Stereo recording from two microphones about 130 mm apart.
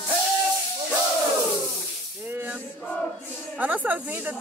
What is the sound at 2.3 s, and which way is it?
Music, 15° right (ahead or behind).